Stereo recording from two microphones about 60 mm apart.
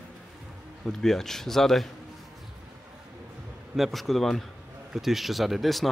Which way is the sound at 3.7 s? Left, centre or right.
Centre.